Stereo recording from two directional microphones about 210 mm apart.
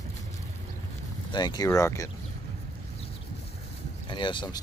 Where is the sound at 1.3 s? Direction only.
20° left (ahead or behind).